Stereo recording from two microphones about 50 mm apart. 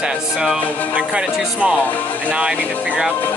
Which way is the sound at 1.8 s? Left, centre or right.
Left.